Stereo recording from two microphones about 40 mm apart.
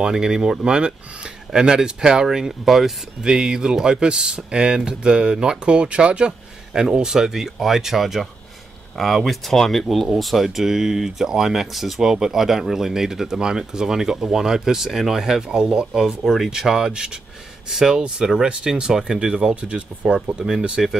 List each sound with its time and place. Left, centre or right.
0.0 s speech: centre
3.3 s speech: centre
6.7 s speech: centre
19.6 s speech: right
20.3 s speech: centre